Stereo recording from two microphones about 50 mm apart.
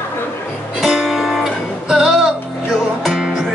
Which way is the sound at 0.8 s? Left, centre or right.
Centre.